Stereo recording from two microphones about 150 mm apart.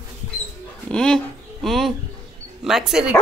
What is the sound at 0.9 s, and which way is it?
A woman's voice, 5° left (ahead or behind).